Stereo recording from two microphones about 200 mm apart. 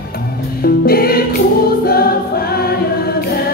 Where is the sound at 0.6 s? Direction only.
50° left (ahead or behind).